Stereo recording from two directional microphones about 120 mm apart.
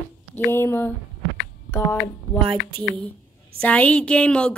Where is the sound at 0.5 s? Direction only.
20° left (ahead or behind).